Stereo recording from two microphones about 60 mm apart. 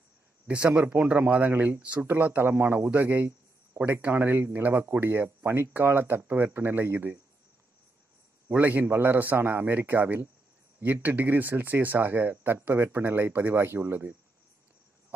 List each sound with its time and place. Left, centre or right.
0.5 s speech: right
8.5 s speech: right